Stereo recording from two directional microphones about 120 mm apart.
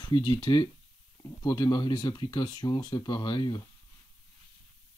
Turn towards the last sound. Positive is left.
turn(degrees=40)  # may be behind; listen again after turning